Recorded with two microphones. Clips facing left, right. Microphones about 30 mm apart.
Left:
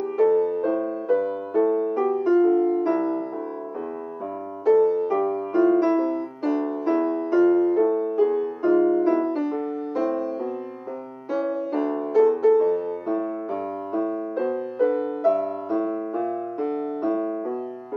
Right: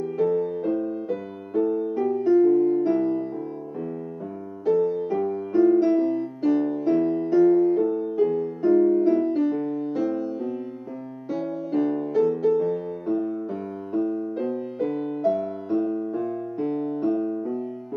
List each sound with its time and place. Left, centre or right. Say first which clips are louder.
0.2 s music: left 4 dB; centre
4.7 s music: left 4 dB; centre
14.3 s music: left 2 dB; centre
16.2 s keyboard: left 2 dB; centre